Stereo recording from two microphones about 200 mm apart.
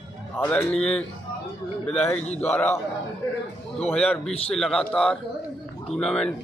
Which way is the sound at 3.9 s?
5° left (ahead or behind).